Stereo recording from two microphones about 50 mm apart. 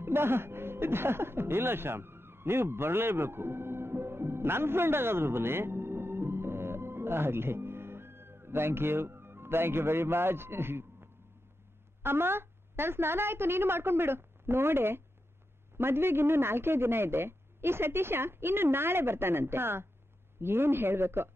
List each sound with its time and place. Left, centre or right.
0.0 s speech: right